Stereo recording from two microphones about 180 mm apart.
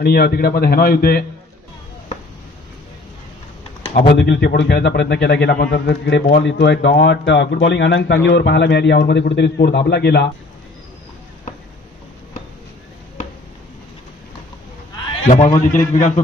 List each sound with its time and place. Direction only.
0.0 s a man's voice: 60° left (ahead or behind)
3.8 s typing: 35° left (ahead or behind)
4.1 s a man's voice: 65° left (ahead or behind)
15.2 s a man's voice: 40° left (ahead or behind)